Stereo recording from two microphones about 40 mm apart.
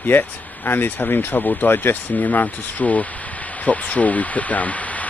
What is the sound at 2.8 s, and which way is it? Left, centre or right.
Speech, left.